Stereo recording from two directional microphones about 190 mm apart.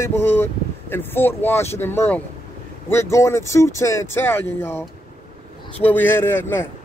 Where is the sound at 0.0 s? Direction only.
10° left (ahead or behind).